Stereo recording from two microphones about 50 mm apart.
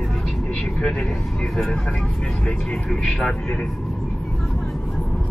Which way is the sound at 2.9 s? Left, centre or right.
Centre.